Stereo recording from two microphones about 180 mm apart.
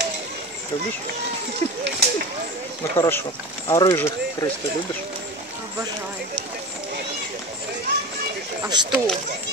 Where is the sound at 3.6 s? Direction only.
15° left (ahead or behind).